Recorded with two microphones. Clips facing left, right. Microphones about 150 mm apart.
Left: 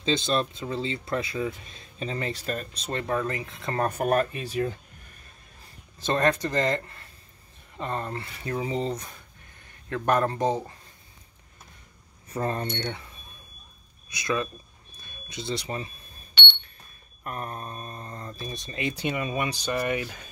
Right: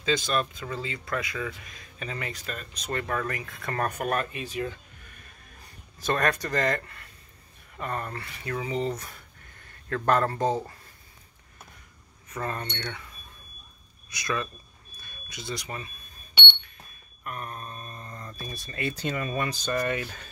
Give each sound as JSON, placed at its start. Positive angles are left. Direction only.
{"t": 0.0, "sound": "speech", "side_deg": 25}
{"t": 5.9, "sound": "speech", "side_deg": 25}
{"t": 12.3, "sound": "speech", "side_deg": 30}
{"t": 17.2, "sound": "speech", "side_deg": 35}